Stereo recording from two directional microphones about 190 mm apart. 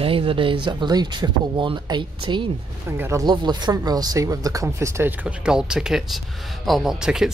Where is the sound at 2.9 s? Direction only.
15° right (ahead or behind).